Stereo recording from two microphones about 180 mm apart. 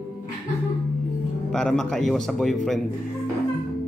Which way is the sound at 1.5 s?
5° left (ahead or behind).